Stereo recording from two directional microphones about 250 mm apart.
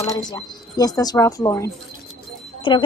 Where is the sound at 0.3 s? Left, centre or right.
Centre.